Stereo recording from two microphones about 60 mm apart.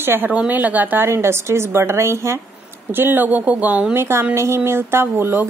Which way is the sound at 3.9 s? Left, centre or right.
Right.